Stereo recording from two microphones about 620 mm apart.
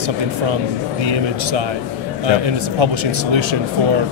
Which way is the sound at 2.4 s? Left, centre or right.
Right.